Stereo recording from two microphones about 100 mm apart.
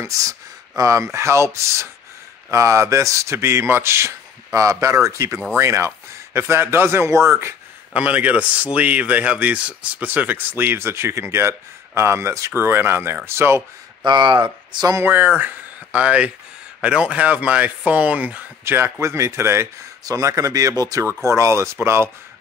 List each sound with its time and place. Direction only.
0.0 s speech: 35° right (ahead or behind)
7.9 s speech: 15° right (ahead or behind)
14.0 s speech: 50° right (ahead or behind)
15.0 s speech: 20° right (ahead or behind)
18.6 s speech: 25° right (ahead or behind)